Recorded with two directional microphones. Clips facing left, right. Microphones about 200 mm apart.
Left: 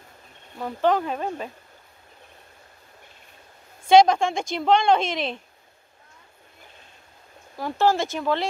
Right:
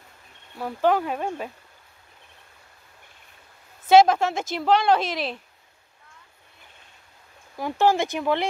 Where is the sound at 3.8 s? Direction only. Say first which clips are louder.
Even; 5° right (ahead or behind).